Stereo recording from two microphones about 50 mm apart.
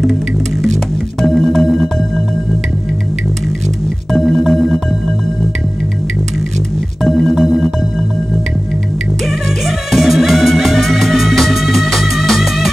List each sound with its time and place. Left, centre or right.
0.0 s music: centre
4.1 s music: centre
7.0 s music: centre
7.3 s music: centre
9.7 s music: centre